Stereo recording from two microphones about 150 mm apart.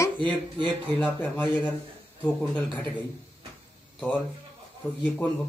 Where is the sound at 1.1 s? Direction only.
15° left (ahead or behind).